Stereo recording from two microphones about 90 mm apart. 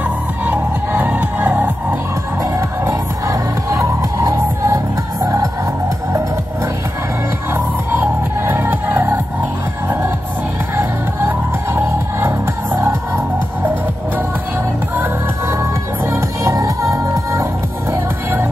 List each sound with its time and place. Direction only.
0.5 s music: 20° right (ahead or behind)
2.8 s music: 30° right (ahead or behind)
7.5 s music: 20° right (ahead or behind)
10.8 s music: 25° right (ahead or behind)
16.1 s music: 35° right (ahead or behind)